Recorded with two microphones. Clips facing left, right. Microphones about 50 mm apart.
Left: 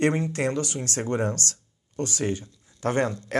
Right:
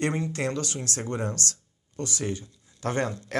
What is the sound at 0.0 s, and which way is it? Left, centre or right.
Speech, left.